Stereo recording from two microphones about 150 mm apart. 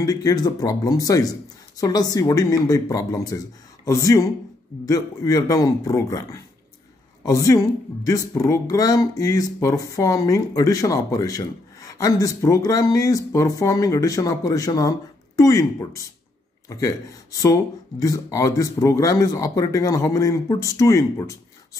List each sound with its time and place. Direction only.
0.0 s speech: 25° left (ahead or behind)